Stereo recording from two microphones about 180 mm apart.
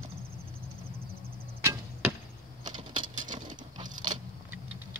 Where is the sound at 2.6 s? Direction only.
25° right (ahead or behind).